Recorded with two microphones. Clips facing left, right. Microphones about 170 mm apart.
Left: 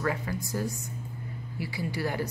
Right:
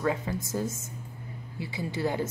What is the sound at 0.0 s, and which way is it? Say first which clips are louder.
A woman's voice: right 2 dB; 20° right (ahead or behind).